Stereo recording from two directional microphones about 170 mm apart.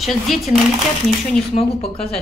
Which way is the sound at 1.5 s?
35° left (ahead or behind).